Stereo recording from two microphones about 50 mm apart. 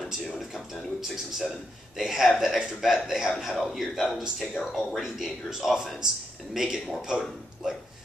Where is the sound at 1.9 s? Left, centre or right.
Centre.